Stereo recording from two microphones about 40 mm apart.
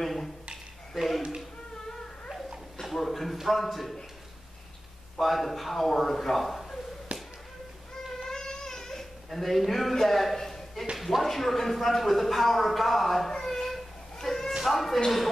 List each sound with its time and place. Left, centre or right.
0.0 s a sound: centre
1.9 s music: centre
2.8 s a sound: centre
3.3 s a man's voice: centre
5.1 s a man's voice: centre
7.1 s tap: right
8.2 s baby cry: centre
11.0 s a man's voice: centre
13.3 s a sound: centre
14.6 s speech: centre